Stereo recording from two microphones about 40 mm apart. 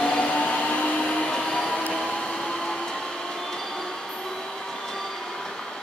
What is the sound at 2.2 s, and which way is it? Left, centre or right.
Train, left.